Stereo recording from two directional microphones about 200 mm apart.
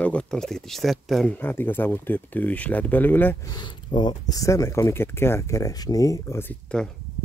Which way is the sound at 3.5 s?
20° left (ahead or behind).